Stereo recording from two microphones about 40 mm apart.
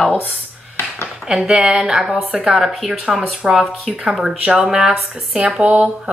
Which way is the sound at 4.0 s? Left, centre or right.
Centre.